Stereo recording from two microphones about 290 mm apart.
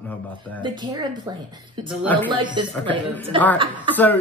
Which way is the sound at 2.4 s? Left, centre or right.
Centre.